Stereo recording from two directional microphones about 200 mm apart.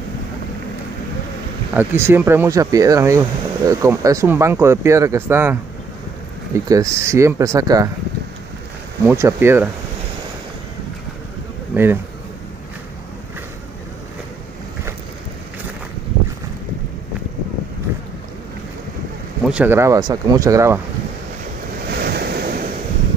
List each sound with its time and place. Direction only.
1.7 s speech: 10° right (ahead or behind)
9.0 s speech: 10° right (ahead or behind)
11.7 s speech: 10° right (ahead or behind)
19.4 s speech: 5° right (ahead or behind)
21.9 s waves: 50° right (ahead or behind)